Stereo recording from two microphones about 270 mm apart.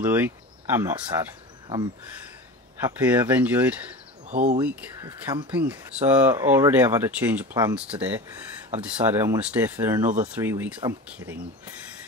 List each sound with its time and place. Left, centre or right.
0.0 s speech: centre
2.8 s speech: centre
4.3 s speech: right
4.6 s speech: centre
10.0 s speech: right
10.4 s speech: centre